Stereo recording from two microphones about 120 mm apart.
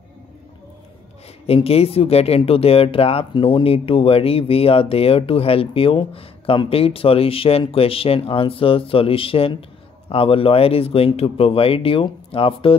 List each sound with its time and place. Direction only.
1.5 s speech: 55° left (ahead or behind)